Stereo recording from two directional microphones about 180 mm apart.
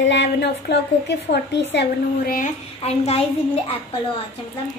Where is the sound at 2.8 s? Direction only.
35° left (ahead or behind).